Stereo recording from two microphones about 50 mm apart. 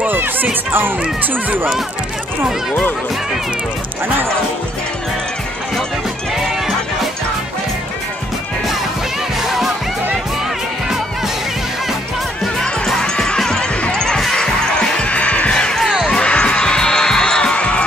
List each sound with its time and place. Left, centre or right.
0.0 s speech: right
9.5 s music: centre
12.5 s music: centre